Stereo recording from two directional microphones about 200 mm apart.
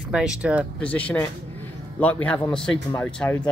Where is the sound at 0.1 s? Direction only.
5° right (ahead or behind).